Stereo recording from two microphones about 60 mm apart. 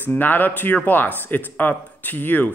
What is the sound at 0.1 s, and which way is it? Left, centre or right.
A man's voice, left.